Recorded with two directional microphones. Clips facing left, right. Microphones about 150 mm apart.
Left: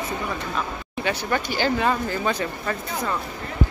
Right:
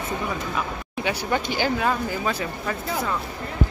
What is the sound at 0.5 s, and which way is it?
Speech, 10° right (ahead or behind).